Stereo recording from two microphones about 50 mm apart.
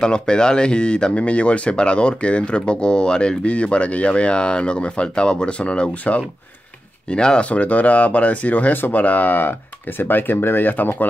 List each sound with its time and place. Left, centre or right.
0.0 s speech: centre
7.4 s speech: left